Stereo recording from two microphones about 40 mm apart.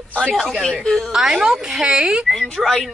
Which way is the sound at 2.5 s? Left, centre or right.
Centre.